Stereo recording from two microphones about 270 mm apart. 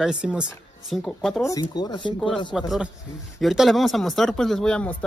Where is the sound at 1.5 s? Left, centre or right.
Centre.